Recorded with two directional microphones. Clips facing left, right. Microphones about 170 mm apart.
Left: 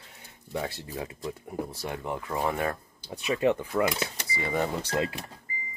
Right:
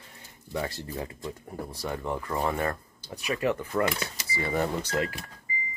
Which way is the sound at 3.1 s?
25° left (ahead or behind).